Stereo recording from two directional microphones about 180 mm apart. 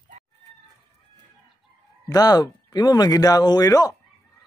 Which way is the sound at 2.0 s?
20° left (ahead or behind).